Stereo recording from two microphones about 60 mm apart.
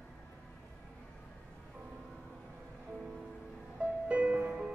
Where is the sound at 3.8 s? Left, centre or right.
Right.